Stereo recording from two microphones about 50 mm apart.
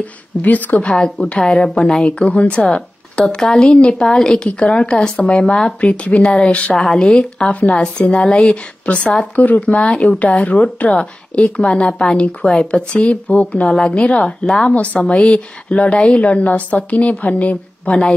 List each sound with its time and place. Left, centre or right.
0.0 s speech: left
0.8 s a woman's voice: centre
4.5 s a woman's voice: left; by 5.8 s centre
5.8 s speech: left
6.2 s a woman's voice: centre
6.5 s speech: left
6.8 s a woman's voice: centre
8.8 s a woman's voice: left